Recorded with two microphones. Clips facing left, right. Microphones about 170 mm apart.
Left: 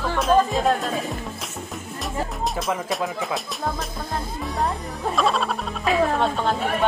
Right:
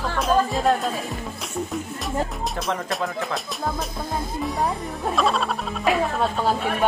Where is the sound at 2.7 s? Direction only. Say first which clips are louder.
Left 1 dB; centre (ahead or behind).